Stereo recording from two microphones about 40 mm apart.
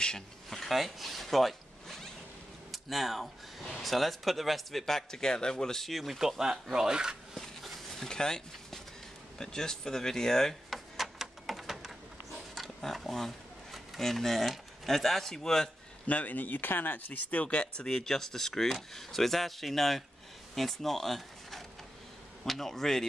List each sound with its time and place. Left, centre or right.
0.5 s zipper: centre
2.7 s speech: centre
5.9 s speech: centre
7.3 s a sound: centre
8.1 s speech: centre
10.7 s a sound: centre
12.9 s speech: centre
16.1 s speech: left
17.8 s speech: centre